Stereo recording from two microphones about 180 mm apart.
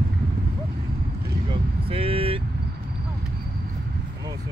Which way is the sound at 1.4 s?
30° right (ahead or behind).